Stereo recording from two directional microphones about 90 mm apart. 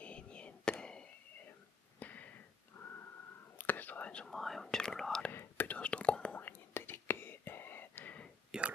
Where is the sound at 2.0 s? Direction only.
15° left (ahead or behind).